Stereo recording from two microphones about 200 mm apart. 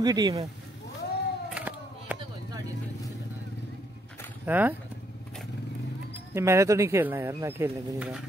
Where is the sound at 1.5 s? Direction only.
10° right (ahead or behind).